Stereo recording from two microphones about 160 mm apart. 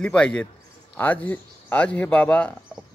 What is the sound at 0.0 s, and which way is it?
Speech, 5° left (ahead or behind).